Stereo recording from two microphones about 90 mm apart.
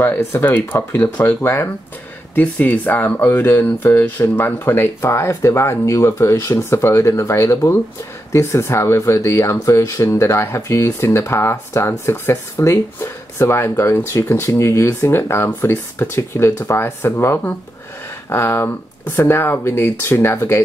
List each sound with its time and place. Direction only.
0.0 s speech: 25° left (ahead or behind)